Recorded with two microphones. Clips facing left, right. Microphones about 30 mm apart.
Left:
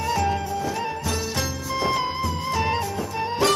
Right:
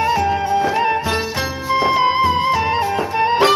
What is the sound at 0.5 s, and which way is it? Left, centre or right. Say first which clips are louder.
Music: right 10 dB; right.